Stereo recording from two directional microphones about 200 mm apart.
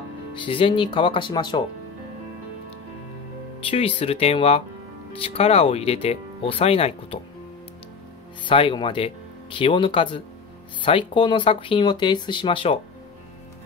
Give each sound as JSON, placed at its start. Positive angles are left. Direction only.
{"t": 0.3, "sound": "speech", "side_deg": 25}
{"t": 3.7, "sound": "speech", "side_deg": 30}
{"t": 8.5, "sound": "speech", "side_deg": 25}